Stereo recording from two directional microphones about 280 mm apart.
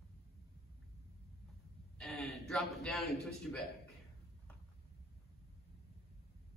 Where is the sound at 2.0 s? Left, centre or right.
Centre.